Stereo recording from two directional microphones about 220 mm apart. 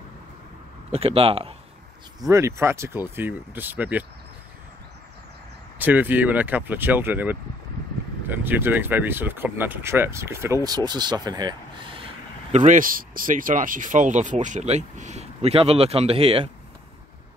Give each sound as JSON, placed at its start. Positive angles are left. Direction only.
{"t": 0.9, "sound": "speech", "side_deg": -25}
{"t": 2.2, "sound": "speech", "side_deg": -15}
{"t": 5.8, "sound": "speech", "side_deg": -10}
{"t": 12.5, "sound": "speech", "side_deg": -35}